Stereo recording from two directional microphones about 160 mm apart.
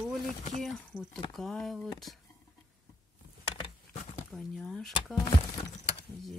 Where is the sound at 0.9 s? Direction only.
15° left (ahead or behind).